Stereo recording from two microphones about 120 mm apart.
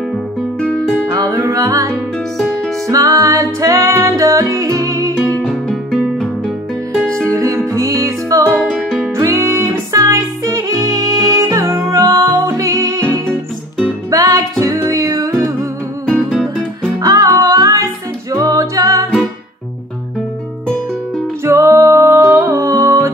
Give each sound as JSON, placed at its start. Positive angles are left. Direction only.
{"t": 0.6, "sound": "music", "side_deg": 5}
{"t": 1.1, "sound": "music", "side_deg": -25}
{"t": 2.3, "sound": "music", "side_deg": 0}
{"t": 2.9, "sound": "music", "side_deg": -30}
{"t": 5.4, "sound": "music", "side_deg": 5}
{"t": 7.2, "sound": "music", "side_deg": -25}
{"t": 16.1, "sound": "music", "side_deg": 0}
{"t": 17.0, "sound": "music", "side_deg": -30}
{"t": 18.3, "sound": "a capella", "side_deg": -30}
{"t": 21.5, "sound": "music", "side_deg": -25}